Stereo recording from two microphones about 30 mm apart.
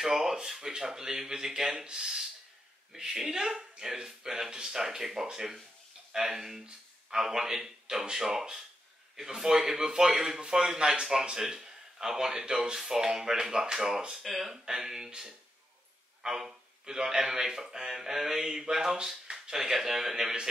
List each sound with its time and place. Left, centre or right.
0.0 s speech: centre
12.3 s speech: right
12.7 s speech: centre
14.2 s speech: centre
14.5 s speech: centre